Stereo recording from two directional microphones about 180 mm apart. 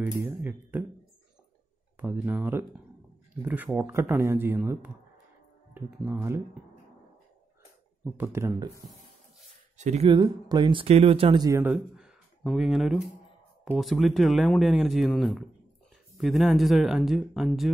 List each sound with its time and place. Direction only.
0.0 s speech: 15° right (ahead or behind)
2.0 s speech: 10° right (ahead or behind)
8.0 s speech: 15° right (ahead or behind)
9.8 s speech: 40° right (ahead or behind)
10.1 s speech: 25° right (ahead or behind)
11.4 s speech: 15° right (ahead or behind)
11.7 s speech: 5° right (ahead or behind)